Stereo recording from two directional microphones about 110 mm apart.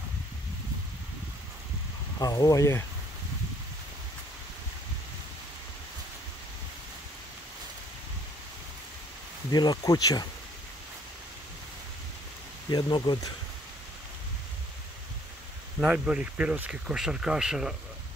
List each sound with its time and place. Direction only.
2.1 s speech: 35° left (ahead or behind)
9.5 s speech: 40° left (ahead or behind)
12.6 s speech: 45° left (ahead or behind)
15.8 s speech: 10° right (ahead or behind)